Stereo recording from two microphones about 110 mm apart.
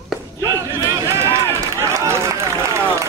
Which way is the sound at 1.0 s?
25° right (ahead or behind).